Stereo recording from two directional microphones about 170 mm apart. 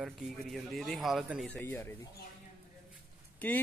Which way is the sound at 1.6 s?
10° left (ahead or behind).